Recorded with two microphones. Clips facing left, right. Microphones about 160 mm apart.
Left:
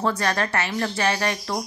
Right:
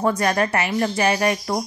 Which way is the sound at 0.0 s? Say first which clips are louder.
Right 4 dB; 15° right (ahead or behind).